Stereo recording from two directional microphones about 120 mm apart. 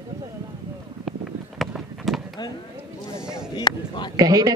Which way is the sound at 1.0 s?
Centre (ahead or behind).